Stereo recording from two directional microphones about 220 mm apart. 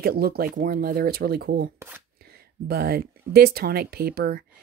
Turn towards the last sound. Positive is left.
turn(degrees=-45)  # may be behind; listen again after turning